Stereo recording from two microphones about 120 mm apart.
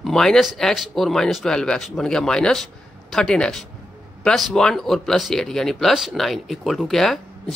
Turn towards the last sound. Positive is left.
turn(degrees=0)  # may be behind; listen again after turning